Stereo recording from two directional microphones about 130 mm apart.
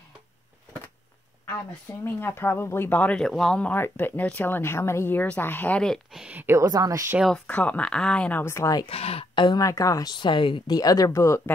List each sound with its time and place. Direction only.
2.0 s speech: 15° left (ahead or behind)
6.2 s a woman's voice: 15° right (ahead or behind)
6.6 s speech: 30° right (ahead or behind)
7.2 s speech: 5° left (ahead or behind); by 8.8 s 25° left (ahead or behind)
8.8 s speech: 50° left (ahead or behind)
9.6 s speech: 25° left (ahead or behind)
10.8 s speech: 30° left (ahead or behind)